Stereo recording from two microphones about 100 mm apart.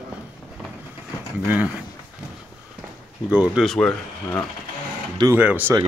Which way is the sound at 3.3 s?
10° right (ahead or behind).